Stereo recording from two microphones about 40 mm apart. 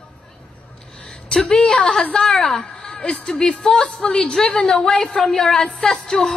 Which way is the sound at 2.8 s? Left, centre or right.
Left.